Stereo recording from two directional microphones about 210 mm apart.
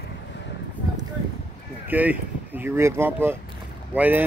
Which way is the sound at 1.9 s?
10° right (ahead or behind).